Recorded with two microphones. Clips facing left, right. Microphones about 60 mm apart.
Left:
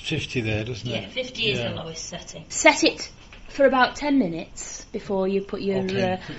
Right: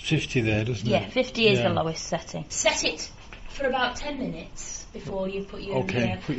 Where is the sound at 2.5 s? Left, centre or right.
Left.